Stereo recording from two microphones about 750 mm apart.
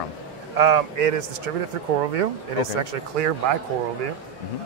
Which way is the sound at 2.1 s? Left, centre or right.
Right.